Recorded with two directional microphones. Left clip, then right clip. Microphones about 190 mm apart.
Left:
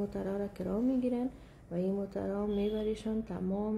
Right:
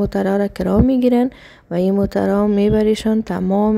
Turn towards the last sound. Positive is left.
turn(degrees=-55)  # may be behind; listen again after turning